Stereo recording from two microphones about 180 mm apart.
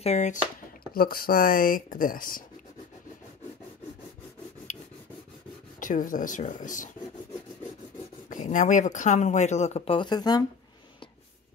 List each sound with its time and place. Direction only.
0.0 s speech: 40° left (ahead or behind)
0.9 s speech: 55° left (ahead or behind)
5.8 s speech: 45° left (ahead or behind)
8.3 s speech: 45° left (ahead or behind); by 10.4 s 20° left (ahead or behind)